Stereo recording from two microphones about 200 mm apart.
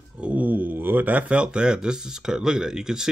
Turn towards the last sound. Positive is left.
turn(degrees=-5)  # may be behind; listen again after turning